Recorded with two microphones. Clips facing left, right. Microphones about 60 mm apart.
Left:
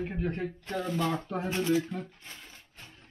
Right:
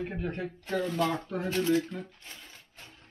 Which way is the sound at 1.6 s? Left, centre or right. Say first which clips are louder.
Right 1 dB; centre.